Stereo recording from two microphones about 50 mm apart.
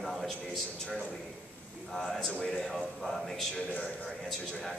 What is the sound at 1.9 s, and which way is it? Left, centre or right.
A man's voice, centre.